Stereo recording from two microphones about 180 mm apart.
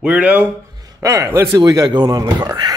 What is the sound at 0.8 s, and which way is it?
A man's voice, 20° right (ahead or behind).